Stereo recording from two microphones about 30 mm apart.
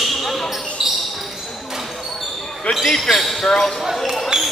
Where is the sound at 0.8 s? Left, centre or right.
Right.